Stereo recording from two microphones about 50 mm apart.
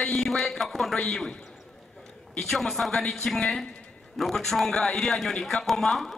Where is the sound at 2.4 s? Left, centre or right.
Centre.